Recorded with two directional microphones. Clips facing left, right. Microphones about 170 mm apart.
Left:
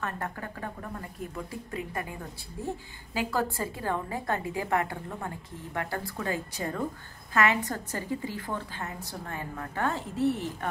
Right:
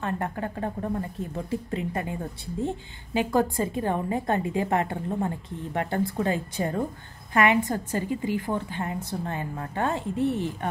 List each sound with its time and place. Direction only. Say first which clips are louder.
0.0 s a woman's voice: right 6 dB; 25° right (ahead or behind)